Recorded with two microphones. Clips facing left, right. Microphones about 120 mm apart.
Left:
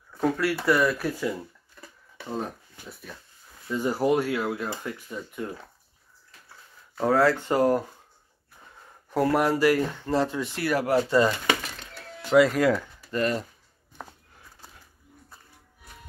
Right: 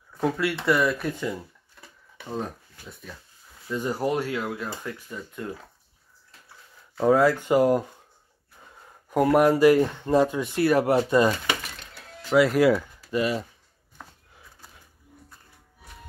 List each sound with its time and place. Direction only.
0.2 s speech: centre (ahead or behind)
1.8 s a sound: centre (ahead or behind)
2.9 s speech: 5° left (ahead or behind)
7.1 s speech: 15° right (ahead or behind)
9.1 s speech: 20° right (ahead or behind)
12.3 s speech: centre (ahead or behind)